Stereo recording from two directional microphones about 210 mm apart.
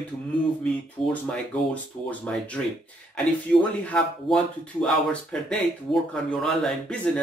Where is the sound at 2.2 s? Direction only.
5° left (ahead or behind).